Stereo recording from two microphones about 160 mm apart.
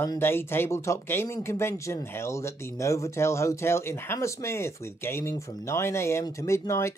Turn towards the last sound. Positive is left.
turn(degrees=15)  # may be behind; listen again after turning